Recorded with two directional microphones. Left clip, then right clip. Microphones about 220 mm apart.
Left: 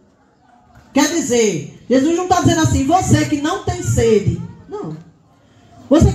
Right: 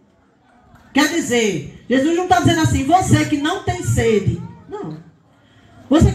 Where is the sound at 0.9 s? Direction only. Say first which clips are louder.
Left 1 dB; 15° right (ahead or behind).